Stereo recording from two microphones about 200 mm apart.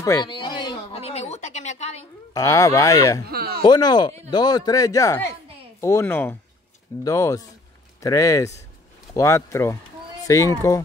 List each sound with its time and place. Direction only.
0.0 s a sound: 20° left (ahead or behind)
2.3 s speech: 15° left (ahead or behind)
3.3 s speech: 50° right (ahead or behind)
3.6 s speech: 20° left (ahead or behind)